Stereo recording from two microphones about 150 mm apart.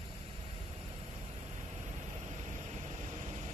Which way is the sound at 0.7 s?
45° right (ahead or behind).